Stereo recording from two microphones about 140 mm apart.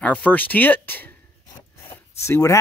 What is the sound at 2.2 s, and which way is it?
Speech, 20° left (ahead or behind).